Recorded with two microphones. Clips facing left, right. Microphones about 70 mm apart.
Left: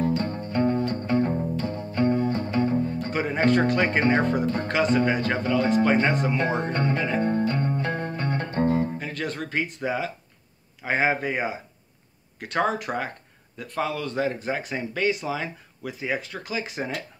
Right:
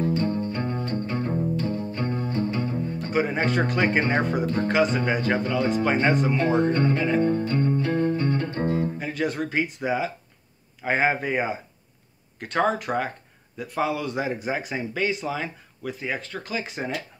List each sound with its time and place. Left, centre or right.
0.3 s music: left
3.1 s speech: centre
6.6 s speech: left
7.2 s music: left
9.0 s speech: centre